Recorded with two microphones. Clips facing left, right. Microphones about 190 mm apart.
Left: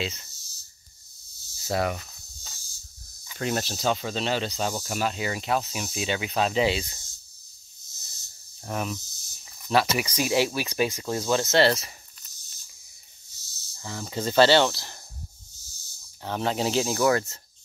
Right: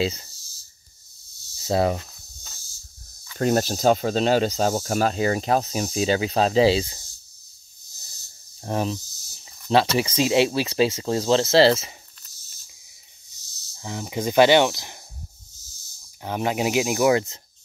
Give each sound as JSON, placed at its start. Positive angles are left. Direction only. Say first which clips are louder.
{"t": 0.0, "sound": "speech", "louder": "right 8 dB", "side_deg": -35}
{"t": 1.5, "sound": "speech", "louder": "right 5 dB", "side_deg": -25}
{"t": 3.3, "sound": "speech", "louder": "right 7 dB", "side_deg": -45}
{"t": 8.6, "sound": "cricket", "louder": "right 5 dB", "side_deg": -25}
{"t": 9.7, "sound": "speech", "louder": "right 4 dB", "side_deg": -25}
{"t": 13.7, "sound": "speech", "louder": "right 3 dB", "side_deg": -15}
{"t": 16.2, "sound": "speech", "louder": "right 3 dB", "side_deg": -15}